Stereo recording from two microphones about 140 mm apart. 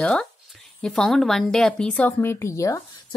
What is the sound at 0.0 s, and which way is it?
A woman's voice, 5° left (ahead or behind).